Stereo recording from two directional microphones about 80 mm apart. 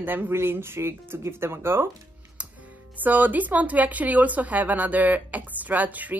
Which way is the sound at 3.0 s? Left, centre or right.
Right.